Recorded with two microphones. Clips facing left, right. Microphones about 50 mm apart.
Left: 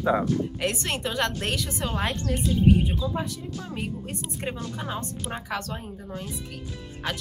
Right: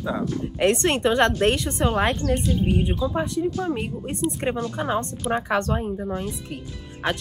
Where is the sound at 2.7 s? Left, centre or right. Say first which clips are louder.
Left 6 dB; centre.